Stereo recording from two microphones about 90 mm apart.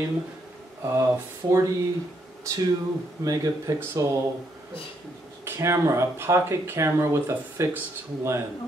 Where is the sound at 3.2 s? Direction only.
40° right (ahead or behind).